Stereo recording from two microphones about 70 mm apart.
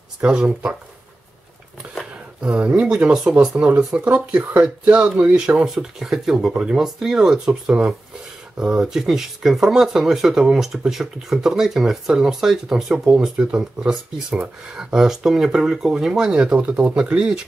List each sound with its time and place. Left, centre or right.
0.2 s speech: centre
2.4 s speech: centre